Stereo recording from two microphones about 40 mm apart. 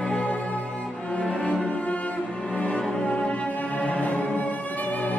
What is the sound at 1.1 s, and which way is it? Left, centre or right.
Cello, left.